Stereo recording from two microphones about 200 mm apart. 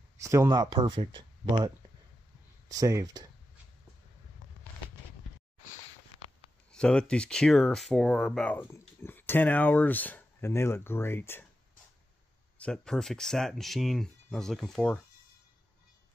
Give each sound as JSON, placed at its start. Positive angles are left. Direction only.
{"t": 0.2, "sound": "speech", "side_deg": -15}
{"t": 2.7, "sound": "speech", "side_deg": -15}
{"t": 6.7, "sound": "speech", "side_deg": 5}
{"t": 12.5, "sound": "speech", "side_deg": 5}